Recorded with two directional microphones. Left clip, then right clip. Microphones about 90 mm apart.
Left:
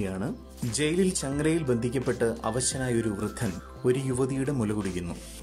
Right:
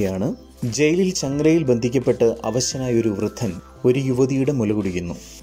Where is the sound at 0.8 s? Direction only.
20° right (ahead or behind).